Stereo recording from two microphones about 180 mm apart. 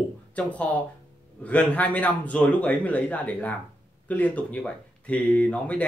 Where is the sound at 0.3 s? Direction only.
10° left (ahead or behind).